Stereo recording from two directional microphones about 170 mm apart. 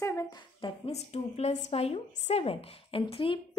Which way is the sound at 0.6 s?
40° left (ahead or behind).